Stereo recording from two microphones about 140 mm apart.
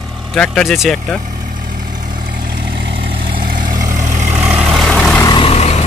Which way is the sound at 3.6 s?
25° right (ahead or behind).